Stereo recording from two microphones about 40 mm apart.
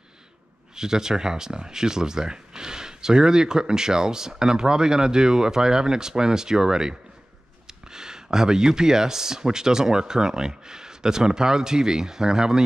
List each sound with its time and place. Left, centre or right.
0.7 s speech: centre